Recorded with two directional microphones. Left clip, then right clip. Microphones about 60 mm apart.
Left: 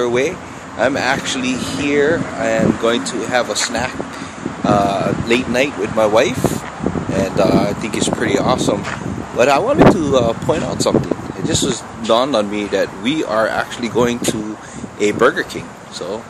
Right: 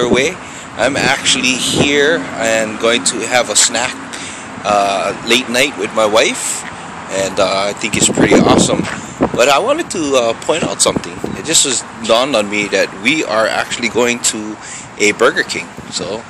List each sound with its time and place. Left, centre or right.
0.0 s speech: left
9.4 s speech: left
9.9 s speech: left